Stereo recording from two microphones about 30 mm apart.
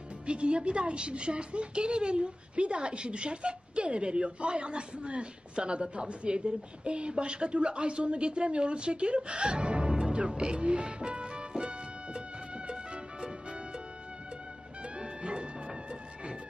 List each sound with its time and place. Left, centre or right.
0.3 s a woman's voice: right
9.8 s music: right
15.0 s music: right